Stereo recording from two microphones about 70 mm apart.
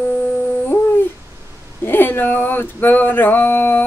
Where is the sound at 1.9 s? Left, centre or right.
Left.